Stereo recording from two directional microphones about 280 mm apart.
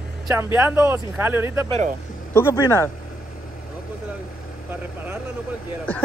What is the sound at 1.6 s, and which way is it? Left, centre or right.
Speech, right.